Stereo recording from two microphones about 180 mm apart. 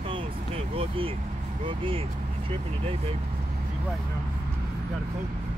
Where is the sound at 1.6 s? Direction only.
30° right (ahead or behind).